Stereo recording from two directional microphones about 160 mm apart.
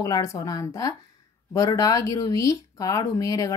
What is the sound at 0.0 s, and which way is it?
Speech, 20° left (ahead or behind).